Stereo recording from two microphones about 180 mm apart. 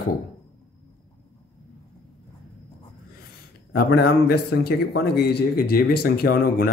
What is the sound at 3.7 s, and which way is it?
A man's voice, 60° left (ahead or behind).